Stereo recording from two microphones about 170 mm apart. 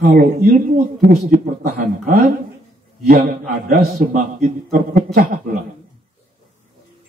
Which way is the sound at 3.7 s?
55° right (ahead or behind).